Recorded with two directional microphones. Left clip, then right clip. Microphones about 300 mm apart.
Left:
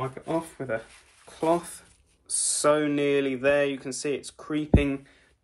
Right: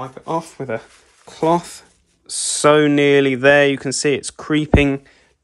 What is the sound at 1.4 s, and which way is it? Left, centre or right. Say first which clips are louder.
Speech: right 8 dB; right.